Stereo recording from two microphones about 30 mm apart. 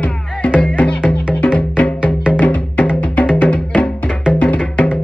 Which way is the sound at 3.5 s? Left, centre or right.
Left.